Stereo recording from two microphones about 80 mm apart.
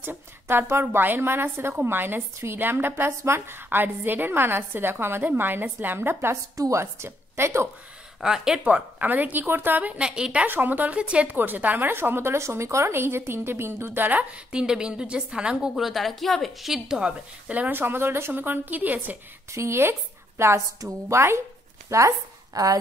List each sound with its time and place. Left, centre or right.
0.0 s a woman's voice: right
6.5 s speech: right
8.2 s a woman's voice: centre
10.4 s a woman's voice: right
15.7 s a woman's voice: centre; by 19.1 s right
19.5 s a woman's voice: right